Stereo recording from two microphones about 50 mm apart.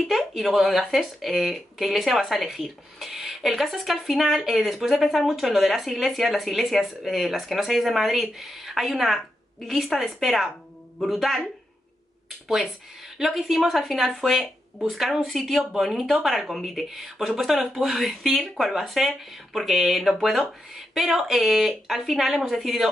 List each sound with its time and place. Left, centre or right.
0.1 s speech: centre
12.4 s speech: centre